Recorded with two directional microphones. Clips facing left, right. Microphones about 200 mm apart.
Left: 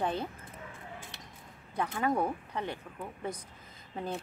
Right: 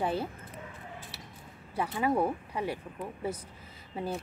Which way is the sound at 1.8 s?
10° right (ahead or behind).